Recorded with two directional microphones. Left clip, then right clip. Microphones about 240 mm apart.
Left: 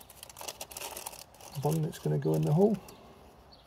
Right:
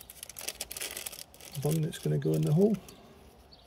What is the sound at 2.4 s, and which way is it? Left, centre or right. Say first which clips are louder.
Speech: left 1 dB; right.